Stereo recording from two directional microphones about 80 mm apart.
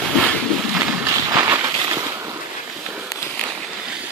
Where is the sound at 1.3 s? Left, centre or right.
Right.